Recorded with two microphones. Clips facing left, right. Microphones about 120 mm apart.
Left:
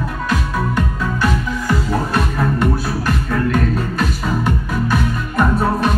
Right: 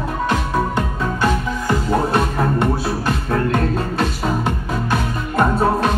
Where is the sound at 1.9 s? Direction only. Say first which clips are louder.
Right 2 dB; 25° right (ahead or behind).